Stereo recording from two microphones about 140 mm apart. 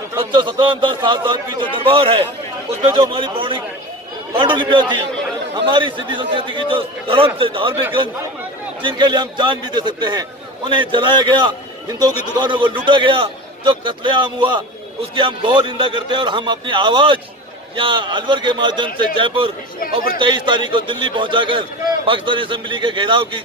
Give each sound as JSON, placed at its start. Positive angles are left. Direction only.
{"t": 0.3, "sound": "a man's voice", "side_deg": -35}